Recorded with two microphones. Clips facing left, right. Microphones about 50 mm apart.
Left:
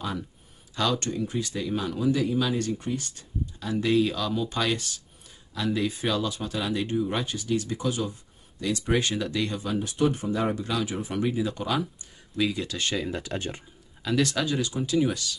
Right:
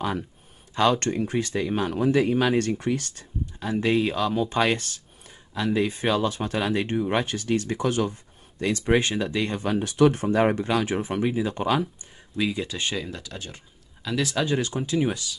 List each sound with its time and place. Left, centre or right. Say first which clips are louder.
0.9 s speech: right 4 dB; right
2.8 s speech: right 5 dB; right
3.5 s speech: right 1 dB; right
5.5 s speech: right 3 dB; right
9.6 s speech: right 4 dB; right
9.8 s speech: right 7 dB; right
10.2 s speech: right 6 dB; right
11.1 s speech: even; right
11.5 s speech: right 4 dB; right
12.4 s speech: right 1 dB; centre
13.2 s speech: left 6 dB; left
14.0 s speech: left 1 dB; centre
14.4 s speech: right 2 dB; right